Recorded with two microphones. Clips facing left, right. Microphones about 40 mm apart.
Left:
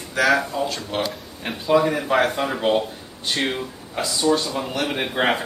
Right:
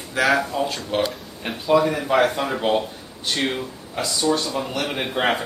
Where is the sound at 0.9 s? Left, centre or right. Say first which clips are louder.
Right 3 dB; centre.